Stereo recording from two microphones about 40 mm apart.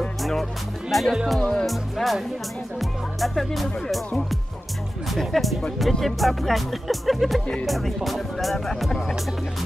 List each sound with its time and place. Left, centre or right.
0.2 s music: centre
1.1 s speech: centre
1.4 s speech: centre
1.7 s speech: centre
5.1 s speech: centre